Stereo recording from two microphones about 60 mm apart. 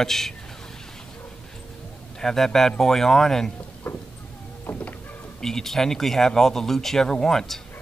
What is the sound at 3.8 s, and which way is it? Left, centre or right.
Vehicle, left.